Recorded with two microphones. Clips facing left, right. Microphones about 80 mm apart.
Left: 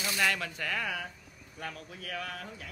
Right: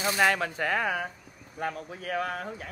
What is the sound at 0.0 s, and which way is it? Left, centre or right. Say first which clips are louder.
Speech: right 6 dB; right.